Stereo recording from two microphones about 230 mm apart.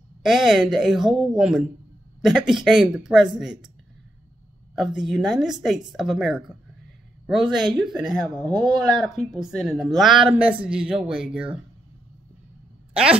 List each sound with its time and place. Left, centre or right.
0.2 s speech: centre
4.7 s speech: centre
7.7 s speech: centre
8.2 s a man's voice: centre
8.9 s speech: centre
12.9 s a woman's voice: centre